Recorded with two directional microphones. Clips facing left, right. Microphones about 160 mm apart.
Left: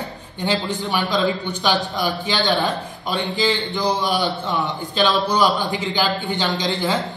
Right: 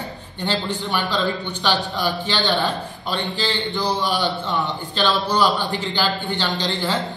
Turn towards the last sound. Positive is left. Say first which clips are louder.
# left 2 dB
turn(degrees=10)  # may be behind; listen again after turning